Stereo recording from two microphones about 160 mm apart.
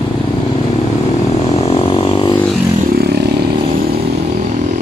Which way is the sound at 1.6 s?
40° left (ahead or behind).